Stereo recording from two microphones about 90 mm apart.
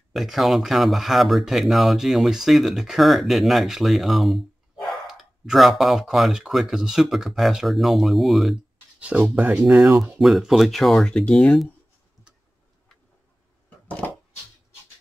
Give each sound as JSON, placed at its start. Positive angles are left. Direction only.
{"t": 0.1, "sound": "speech", "side_deg": 0}
{"t": 9.0, "sound": "speech", "side_deg": -15}
{"t": 10.0, "sound": "speech", "side_deg": -5}
{"t": 13.8, "sound": "a sound", "side_deg": 15}